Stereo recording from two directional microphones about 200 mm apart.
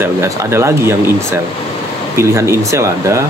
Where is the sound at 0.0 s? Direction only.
15° right (ahead or behind).